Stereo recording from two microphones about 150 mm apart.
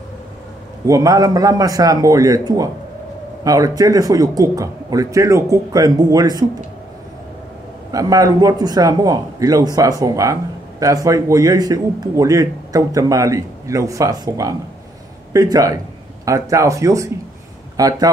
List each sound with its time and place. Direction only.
0.8 s a man's voice: 25° right (ahead or behind)
7.9 s a man's voice: 25° right (ahead or behind)